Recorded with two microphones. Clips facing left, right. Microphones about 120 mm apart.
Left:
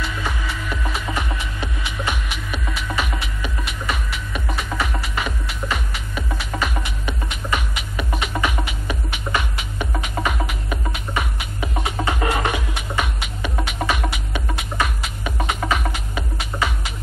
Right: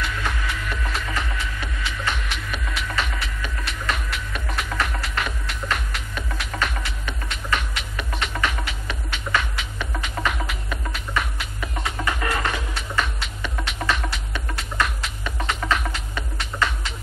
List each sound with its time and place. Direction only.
0.0 s music: 10° left (ahead or behind)
1.0 s music: 20° left (ahead or behind)